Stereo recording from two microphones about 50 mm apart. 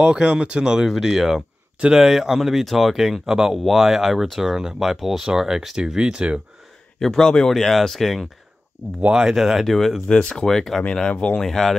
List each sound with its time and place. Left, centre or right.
0.0 s speech: centre
7.0 s speech: centre
9.1 s speech: centre
10.0 s speech: centre
11.0 s speech: centre
11.4 s speech: centre